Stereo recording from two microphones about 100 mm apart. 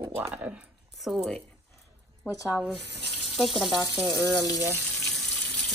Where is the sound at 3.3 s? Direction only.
Centre (ahead or behind).